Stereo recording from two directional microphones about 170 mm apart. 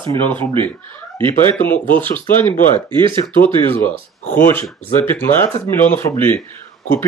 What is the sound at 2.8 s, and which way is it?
Speech, 30° right (ahead or behind).